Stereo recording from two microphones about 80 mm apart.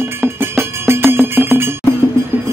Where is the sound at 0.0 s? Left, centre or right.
Right.